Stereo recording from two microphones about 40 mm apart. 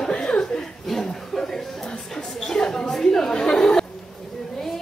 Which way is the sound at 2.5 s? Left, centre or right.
Centre.